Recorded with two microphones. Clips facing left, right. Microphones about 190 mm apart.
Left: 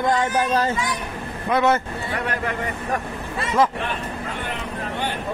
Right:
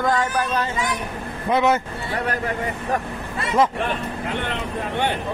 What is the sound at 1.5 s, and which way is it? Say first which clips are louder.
Speech: even; 20° right (ahead or behind).